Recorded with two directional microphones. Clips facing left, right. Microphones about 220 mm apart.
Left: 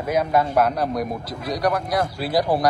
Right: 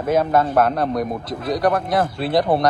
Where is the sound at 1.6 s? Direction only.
50° right (ahead or behind).